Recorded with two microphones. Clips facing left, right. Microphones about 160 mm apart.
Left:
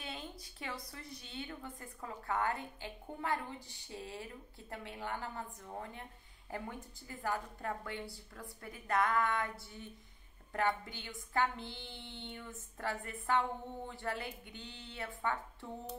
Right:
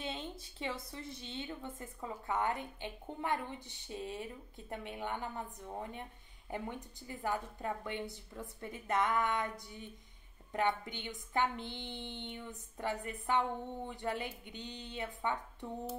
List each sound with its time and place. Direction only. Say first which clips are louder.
0.0 s a woman's voice: right 4 dB; 25° right (ahead or behind)